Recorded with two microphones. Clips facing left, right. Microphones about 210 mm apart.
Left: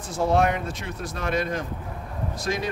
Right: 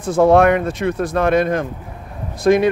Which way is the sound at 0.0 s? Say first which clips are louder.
Right 10 dB; 55° right (ahead or behind).